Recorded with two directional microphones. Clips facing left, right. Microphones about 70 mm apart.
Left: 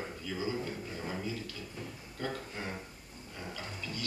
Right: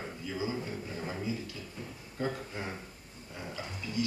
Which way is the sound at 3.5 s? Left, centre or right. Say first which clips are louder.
Right 3 dB; centre.